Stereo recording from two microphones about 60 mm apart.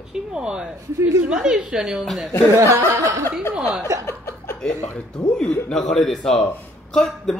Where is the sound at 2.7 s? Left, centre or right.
Right.